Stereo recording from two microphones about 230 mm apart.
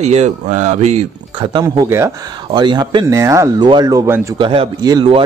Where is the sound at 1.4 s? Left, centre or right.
Centre.